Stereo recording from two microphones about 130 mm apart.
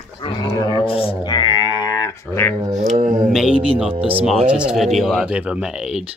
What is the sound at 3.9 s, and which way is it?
Speech, 45° right (ahead or behind).